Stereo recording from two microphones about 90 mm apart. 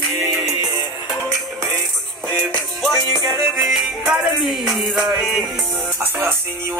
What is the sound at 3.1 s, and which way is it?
Music, 45° right (ahead or behind).